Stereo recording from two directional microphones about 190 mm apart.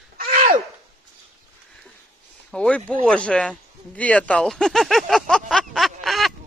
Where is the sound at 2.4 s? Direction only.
5° left (ahead or behind).